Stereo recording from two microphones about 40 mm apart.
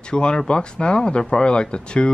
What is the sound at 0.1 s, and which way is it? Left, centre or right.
Speech, left.